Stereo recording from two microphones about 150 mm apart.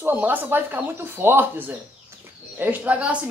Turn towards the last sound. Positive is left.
turn(degrees=-10)  # may be behind; listen again after turning